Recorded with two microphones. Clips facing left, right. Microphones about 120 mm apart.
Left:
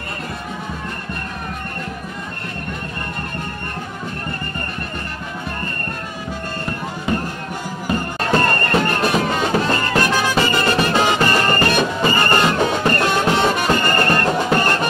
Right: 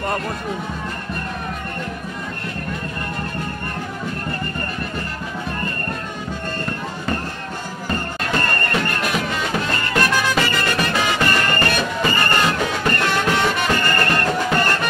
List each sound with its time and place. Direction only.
7.1 s music: 10° left (ahead or behind)
8.2 s music: 35° left (ahead or behind)